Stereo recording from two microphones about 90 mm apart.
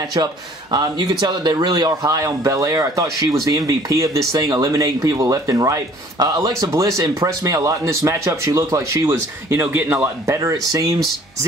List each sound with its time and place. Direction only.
0.1 s a man's voice: 50° right (ahead or behind); by 10.0 s 20° right (ahead or behind)
10.2 s speech: 35° right (ahead or behind)